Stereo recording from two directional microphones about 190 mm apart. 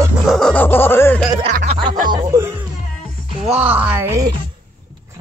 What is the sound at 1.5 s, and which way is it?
Music, 40° right (ahead or behind).